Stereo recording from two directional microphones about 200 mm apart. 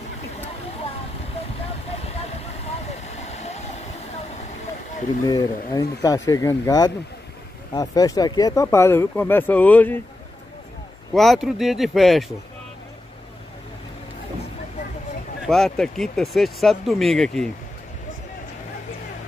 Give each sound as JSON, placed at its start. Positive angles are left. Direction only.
{"t": 3.2, "sound": "vehicle", "side_deg": 35}
{"t": 5.2, "sound": "speech", "side_deg": 20}
{"t": 11.1, "sound": "speech", "side_deg": 0}
{"t": 15.4, "sound": "speech", "side_deg": 5}